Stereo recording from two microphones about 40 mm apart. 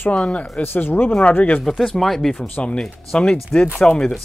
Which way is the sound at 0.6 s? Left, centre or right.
Left.